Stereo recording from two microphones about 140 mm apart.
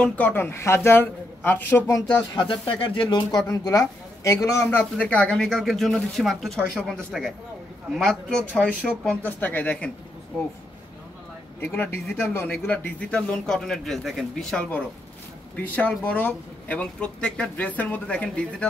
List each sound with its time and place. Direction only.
0.0 s a man's voice: 10° left (ahead or behind)
2.3 s speech: 35° left (ahead or behind)
3.2 s a man's voice: 25° left (ahead or behind)
11.6 s a man's voice: 15° left (ahead or behind)